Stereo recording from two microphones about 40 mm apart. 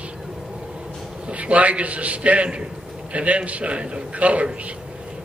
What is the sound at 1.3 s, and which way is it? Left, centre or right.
A man's voice, right.